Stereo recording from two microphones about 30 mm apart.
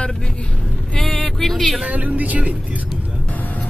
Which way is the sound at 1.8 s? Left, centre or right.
Right.